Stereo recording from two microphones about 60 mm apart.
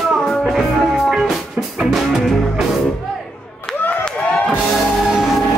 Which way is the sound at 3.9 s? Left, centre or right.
Centre.